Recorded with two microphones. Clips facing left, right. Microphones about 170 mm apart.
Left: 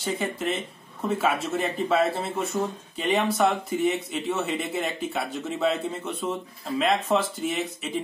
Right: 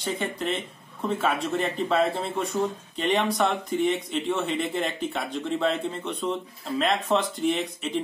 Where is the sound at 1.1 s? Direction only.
5° left (ahead or behind).